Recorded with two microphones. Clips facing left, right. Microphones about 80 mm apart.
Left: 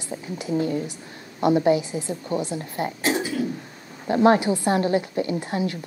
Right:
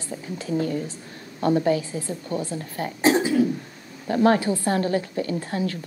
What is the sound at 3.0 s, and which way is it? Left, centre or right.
Throat clearing, right.